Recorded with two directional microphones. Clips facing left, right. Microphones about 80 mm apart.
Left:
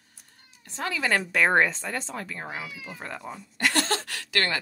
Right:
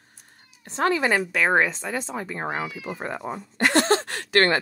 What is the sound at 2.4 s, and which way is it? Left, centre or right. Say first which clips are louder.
Speech: right 8 dB; right.